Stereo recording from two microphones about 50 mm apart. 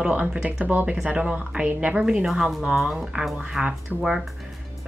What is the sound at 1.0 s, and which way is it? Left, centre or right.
A woman's voice, right.